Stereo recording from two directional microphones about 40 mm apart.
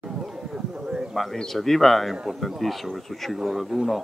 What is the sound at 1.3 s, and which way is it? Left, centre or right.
Speech, centre.